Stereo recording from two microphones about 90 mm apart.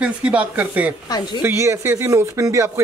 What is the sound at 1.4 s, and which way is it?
Speech, 30° right (ahead or behind).